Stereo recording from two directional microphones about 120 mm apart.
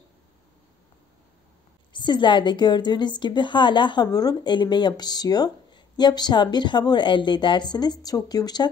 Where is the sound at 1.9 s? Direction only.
40° left (ahead or behind).